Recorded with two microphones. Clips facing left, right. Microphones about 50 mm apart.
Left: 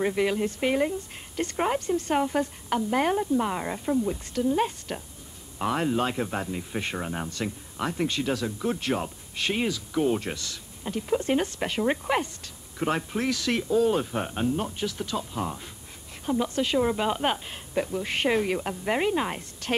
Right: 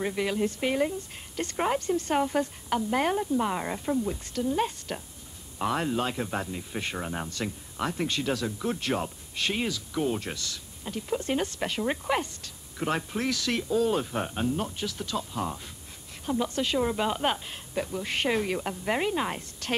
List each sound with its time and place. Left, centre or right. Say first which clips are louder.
0.0 s speech: left 3 dB; centre